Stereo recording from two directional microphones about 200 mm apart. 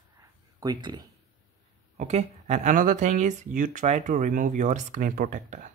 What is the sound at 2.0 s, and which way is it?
Speech, 35° right (ahead or behind).